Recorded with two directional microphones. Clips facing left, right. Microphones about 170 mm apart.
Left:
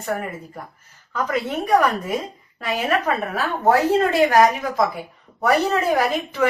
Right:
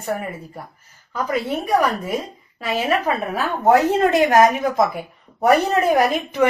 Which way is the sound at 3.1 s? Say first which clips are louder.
Right 1 dB; 15° right (ahead or behind).